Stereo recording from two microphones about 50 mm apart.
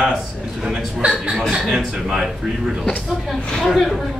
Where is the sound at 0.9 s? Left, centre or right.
Right.